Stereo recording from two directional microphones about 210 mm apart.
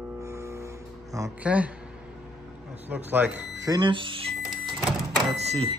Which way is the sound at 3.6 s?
20° right (ahead or behind).